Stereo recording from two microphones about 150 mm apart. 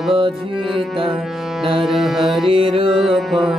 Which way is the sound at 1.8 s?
Centre (ahead or behind).